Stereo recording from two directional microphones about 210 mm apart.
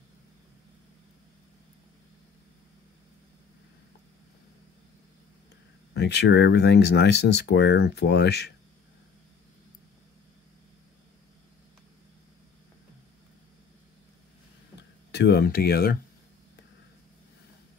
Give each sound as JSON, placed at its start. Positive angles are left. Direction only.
{"t": 5.9, "sound": "speech", "side_deg": 55}
{"t": 15.0, "sound": "speech", "side_deg": 55}